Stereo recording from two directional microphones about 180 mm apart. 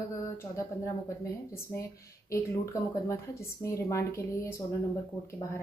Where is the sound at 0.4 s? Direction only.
15° left (ahead or behind).